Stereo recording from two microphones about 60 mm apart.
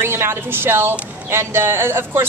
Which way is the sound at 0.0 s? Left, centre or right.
Right.